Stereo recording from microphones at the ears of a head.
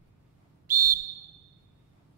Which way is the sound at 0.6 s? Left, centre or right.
Right.